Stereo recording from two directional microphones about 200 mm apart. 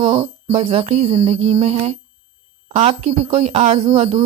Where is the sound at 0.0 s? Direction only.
30° right (ahead or behind).